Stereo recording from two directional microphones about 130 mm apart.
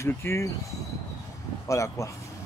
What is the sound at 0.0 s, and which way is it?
Speech, 20° left (ahead or behind).